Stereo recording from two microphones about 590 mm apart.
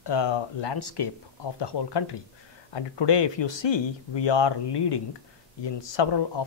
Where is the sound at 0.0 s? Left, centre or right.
Left.